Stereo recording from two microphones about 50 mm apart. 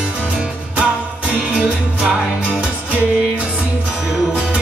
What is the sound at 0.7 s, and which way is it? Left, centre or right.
Music, right.